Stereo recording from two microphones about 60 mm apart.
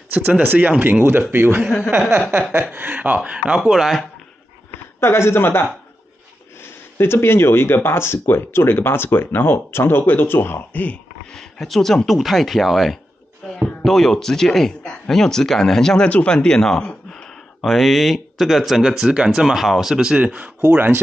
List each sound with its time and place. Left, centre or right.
0.1 s speech: right
1.0 s speech: right
2.7 s speech: right
3.5 s speech: centre
5.0 s speech: left
11.3 s speech: centre
16.1 s speech: centre
17.6 s speech: centre
20.6 s speech: right